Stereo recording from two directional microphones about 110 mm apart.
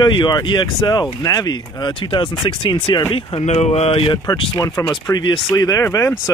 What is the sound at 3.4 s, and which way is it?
Speech, 90° left.